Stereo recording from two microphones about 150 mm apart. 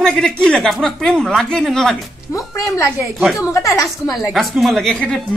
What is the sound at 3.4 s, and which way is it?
Speech, 20° left (ahead or behind).